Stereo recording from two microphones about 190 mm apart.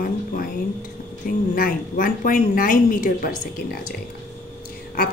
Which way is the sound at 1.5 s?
50° left (ahead or behind).